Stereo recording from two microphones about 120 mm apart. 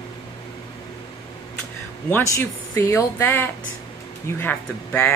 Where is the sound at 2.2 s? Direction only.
25° left (ahead or behind).